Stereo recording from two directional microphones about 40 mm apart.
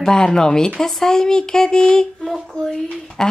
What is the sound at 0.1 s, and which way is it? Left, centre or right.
Speech, centre.